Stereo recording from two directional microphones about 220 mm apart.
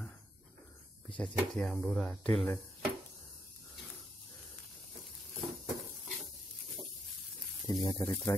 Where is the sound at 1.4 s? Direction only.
Centre (ahead or behind).